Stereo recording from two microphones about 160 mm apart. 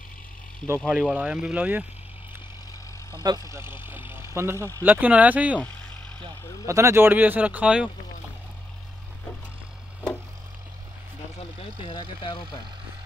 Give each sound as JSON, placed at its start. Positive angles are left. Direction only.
{"t": 0.8, "sound": "speech", "side_deg": -5}
{"t": 3.3, "sound": "speech", "side_deg": -20}
{"t": 6.6, "sound": "speech", "side_deg": -20}
{"t": 11.9, "sound": "speech", "side_deg": 30}